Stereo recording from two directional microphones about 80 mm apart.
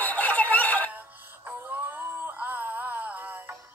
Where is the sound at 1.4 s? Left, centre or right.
Right.